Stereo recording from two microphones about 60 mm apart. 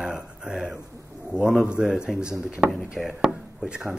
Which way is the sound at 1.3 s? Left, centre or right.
Centre.